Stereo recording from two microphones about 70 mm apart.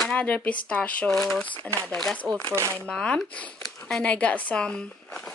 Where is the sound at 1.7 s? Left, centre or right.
Left.